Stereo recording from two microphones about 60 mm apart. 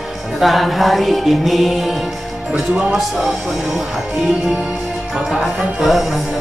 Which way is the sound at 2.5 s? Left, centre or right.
Centre.